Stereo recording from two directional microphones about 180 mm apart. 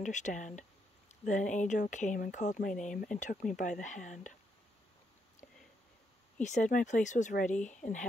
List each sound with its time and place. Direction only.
0.0 s speech: 45° left (ahead or behind)
6.4 s speech: 45° left (ahead or behind)